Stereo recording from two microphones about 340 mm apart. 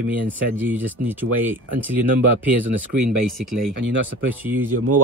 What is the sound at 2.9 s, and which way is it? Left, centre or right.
Speech, right.